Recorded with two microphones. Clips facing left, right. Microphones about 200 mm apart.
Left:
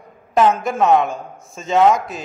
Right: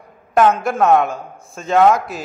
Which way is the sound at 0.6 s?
Centre (ahead or behind).